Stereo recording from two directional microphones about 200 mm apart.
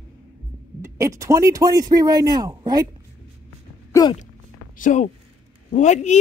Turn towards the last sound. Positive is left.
turn(degrees=35)  # may be behind; listen again after turning